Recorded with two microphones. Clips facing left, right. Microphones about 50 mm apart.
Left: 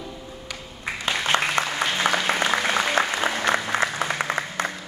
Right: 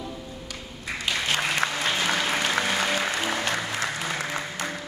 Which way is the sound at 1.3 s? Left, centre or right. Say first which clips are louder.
Left 8 dB; left.